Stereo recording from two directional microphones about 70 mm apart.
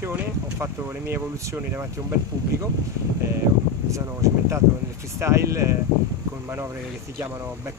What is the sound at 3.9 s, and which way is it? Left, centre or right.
Speech, right.